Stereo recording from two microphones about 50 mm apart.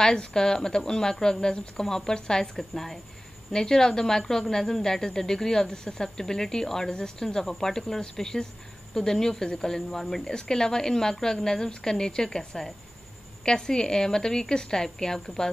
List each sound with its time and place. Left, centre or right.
0.0 s a woman's voice: centre